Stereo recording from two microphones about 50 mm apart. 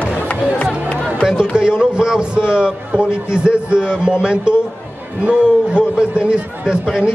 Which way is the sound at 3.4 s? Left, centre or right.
Centre.